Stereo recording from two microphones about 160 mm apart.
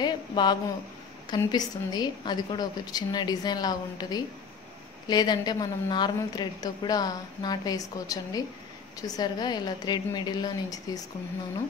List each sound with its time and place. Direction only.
0.0 s a woman's voice: 25° left (ahead or behind)